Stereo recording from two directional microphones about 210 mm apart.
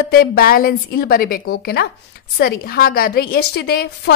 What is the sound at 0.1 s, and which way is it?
A woman's voice, 45° left (ahead or behind).